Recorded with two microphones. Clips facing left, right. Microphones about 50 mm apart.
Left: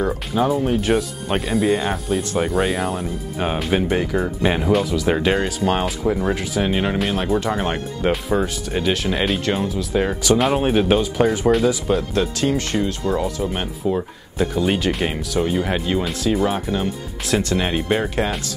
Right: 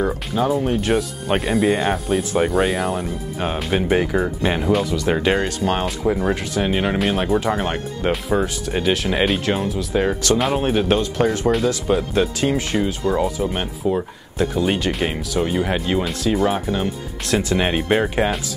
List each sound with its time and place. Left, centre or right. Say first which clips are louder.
0.0 s speech: even; centre
3.9 s speech: right 2 dB; centre
4.4 s speech: left 3 dB; centre
11.9 s speech: right 1 dB; centre
17.6 s speech: right 2 dB; centre